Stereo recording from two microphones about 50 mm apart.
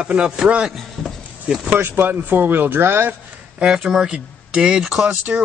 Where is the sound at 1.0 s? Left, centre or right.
Centre.